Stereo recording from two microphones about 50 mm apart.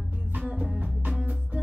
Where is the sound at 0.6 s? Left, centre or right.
Right.